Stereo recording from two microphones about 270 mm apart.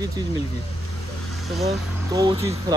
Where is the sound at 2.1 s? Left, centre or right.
Centre.